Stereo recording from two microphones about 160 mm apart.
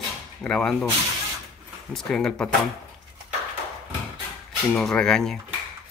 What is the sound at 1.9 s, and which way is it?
Speech, 5° left (ahead or behind).